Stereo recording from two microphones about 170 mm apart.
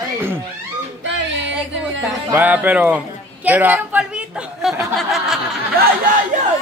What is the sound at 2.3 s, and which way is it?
Speech, 10° right (ahead or behind).